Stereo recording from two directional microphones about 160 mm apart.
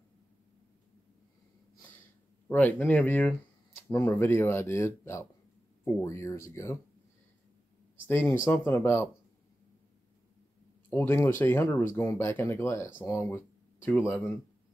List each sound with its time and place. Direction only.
2.4 s speech: 10° left (ahead or behind)
8.1 s speech: 15° left (ahead or behind)
10.9 s speech: 15° left (ahead or behind)